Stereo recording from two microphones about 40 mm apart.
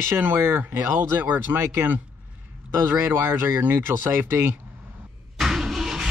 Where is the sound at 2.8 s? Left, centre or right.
Right.